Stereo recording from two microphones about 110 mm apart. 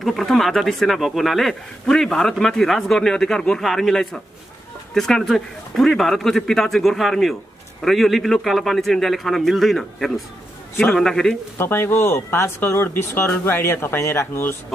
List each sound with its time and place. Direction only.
0.0 s speech: centre (ahead or behind)
11.5 s speech: 20° left (ahead or behind)